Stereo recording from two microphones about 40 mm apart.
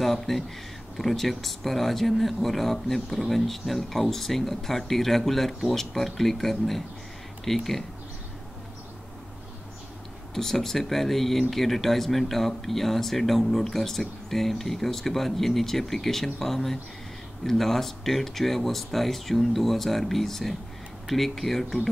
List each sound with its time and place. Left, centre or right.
0.0 s speech: centre
10.3 s speech: centre